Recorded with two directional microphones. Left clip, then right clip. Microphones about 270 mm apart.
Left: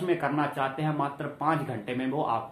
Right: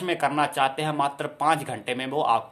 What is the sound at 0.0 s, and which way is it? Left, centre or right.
Speech, right.